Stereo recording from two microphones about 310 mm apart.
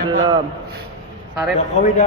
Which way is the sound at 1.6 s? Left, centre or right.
Left.